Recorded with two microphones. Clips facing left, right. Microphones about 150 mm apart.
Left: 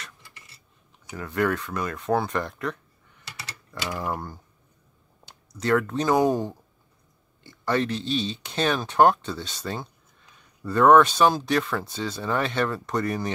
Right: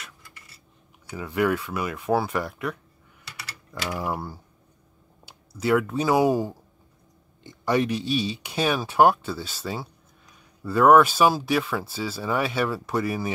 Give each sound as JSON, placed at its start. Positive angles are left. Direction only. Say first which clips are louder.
{"t": 1.1, "sound": "speech", "louder": "right 1 dB", "side_deg": -10}
{"t": 3.3, "sound": "typing", "louder": "left 1 dB", "side_deg": 25}
{"t": 3.9, "sound": "speech", "louder": "right 1 dB", "side_deg": -10}